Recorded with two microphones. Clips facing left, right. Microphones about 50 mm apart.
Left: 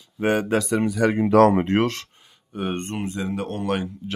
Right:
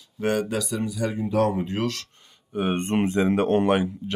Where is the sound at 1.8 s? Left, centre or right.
Left.